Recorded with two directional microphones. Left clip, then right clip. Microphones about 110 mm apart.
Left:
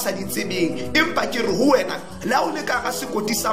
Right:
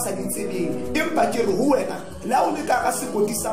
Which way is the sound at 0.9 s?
25° right (ahead or behind).